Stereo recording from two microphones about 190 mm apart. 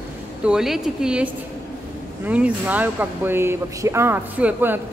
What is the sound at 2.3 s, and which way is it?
Speech, 5° right (ahead or behind).